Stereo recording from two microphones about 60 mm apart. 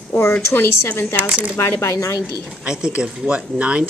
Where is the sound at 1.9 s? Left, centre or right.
Left.